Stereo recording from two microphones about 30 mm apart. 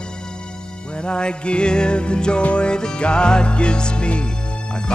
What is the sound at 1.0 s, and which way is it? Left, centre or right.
Music, left.